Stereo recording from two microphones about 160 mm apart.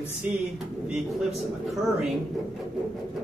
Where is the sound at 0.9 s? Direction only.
Centre (ahead or behind).